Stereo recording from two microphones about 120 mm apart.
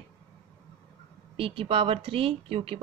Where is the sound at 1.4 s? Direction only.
50° right (ahead or behind).